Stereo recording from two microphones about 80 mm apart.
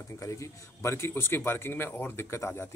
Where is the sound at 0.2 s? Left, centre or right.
Left.